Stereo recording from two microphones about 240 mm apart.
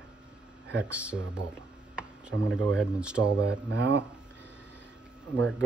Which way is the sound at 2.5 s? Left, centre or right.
Centre.